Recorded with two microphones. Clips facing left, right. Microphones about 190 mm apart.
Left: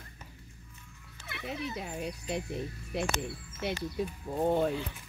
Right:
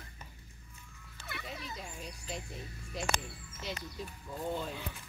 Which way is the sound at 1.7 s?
65° left (ahead or behind).